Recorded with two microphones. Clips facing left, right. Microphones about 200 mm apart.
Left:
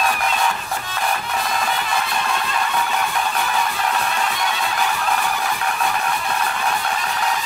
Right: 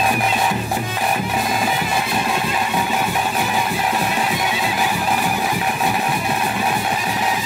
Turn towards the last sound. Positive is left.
turn(degrees=-10)  # may be behind; listen again after turning